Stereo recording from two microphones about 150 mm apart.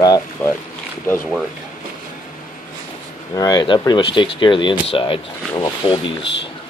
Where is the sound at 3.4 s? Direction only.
25° left (ahead or behind).